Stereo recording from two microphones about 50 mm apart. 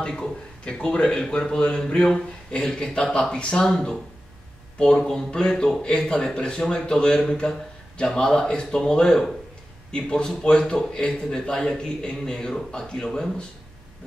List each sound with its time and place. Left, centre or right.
0.7 s a man's voice: centre